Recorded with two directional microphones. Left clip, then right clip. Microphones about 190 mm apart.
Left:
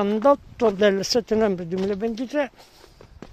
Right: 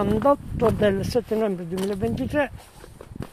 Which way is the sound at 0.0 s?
35° left (ahead or behind).